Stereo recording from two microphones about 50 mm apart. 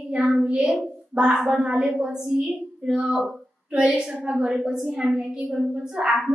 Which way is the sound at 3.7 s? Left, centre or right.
Right.